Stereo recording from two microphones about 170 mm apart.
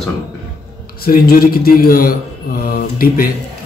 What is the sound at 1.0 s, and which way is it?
A man's voice, 60° left (ahead or behind).